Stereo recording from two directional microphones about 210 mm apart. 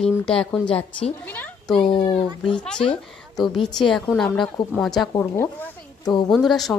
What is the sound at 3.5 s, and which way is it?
A woman's voice, centre (ahead or behind).